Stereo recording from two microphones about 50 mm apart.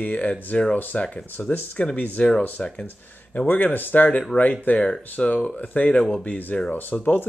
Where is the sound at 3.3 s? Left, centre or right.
Left.